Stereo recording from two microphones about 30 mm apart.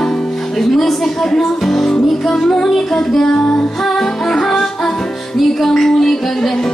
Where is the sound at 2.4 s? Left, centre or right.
Centre.